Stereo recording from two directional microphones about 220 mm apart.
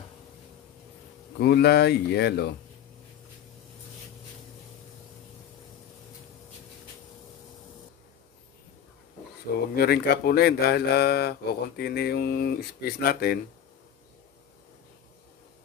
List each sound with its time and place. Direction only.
1.4 s speech: 50° left (ahead or behind)
9.8 s speech: 45° left (ahead or behind)